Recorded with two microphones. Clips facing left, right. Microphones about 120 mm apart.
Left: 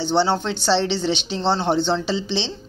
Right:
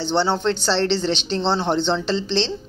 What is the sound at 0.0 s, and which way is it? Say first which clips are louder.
Speech: even; centre (ahead or behind).